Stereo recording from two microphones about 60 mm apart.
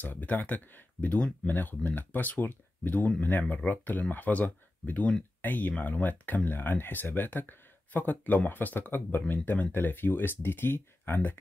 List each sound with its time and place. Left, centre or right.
0.0 s speech: left